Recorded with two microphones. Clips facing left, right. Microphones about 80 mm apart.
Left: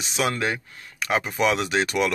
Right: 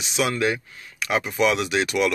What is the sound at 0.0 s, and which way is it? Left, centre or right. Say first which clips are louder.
Speech: right 2 dB; left.